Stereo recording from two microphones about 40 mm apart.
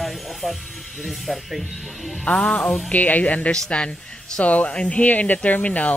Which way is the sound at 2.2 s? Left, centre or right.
Left.